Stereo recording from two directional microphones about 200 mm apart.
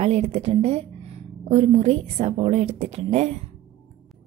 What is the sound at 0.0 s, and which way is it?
A woman's voice, 30° right (ahead or behind).